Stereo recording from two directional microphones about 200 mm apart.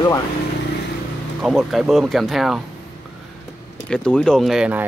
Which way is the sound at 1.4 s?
Centre (ahead or behind).